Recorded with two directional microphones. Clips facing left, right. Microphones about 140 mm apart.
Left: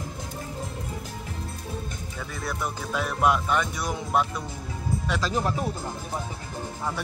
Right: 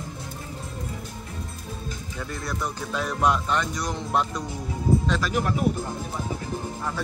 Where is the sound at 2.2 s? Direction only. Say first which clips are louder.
Right 1 dB; centre (ahead or behind).